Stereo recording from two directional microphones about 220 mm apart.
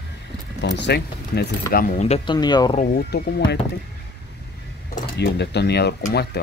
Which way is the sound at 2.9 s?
50° left (ahead or behind).